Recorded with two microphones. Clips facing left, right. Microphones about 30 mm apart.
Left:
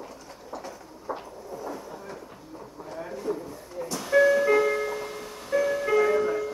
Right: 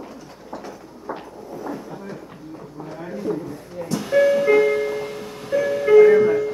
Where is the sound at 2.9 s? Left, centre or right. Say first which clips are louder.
Right 5 dB; right.